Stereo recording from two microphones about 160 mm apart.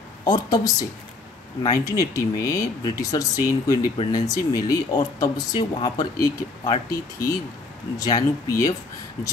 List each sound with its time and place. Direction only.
0.2 s speech: 25° left (ahead or behind)